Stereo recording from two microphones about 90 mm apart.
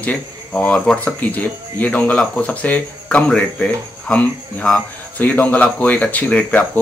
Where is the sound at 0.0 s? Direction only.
15° left (ahead or behind).